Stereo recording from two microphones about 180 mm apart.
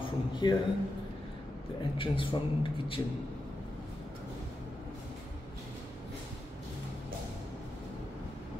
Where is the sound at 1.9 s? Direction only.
30° left (ahead or behind).